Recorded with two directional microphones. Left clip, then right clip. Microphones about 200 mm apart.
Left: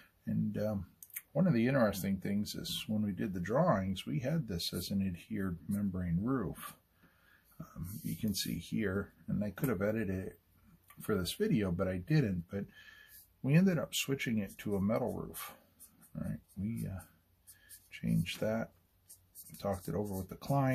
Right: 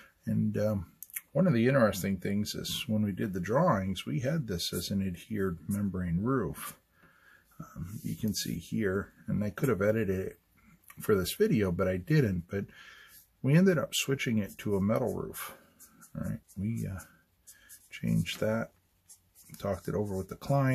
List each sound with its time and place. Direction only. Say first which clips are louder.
0.0 s speech: right 5 dB; 45° right (ahead or behind)
9.4 s speech: right 6 dB; 50° right (ahead or behind)